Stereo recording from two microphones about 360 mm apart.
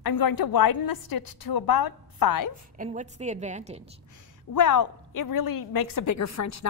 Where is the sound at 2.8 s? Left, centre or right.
Centre.